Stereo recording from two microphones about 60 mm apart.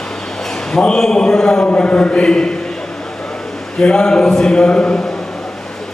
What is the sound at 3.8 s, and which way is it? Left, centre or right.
A man's voice, centre.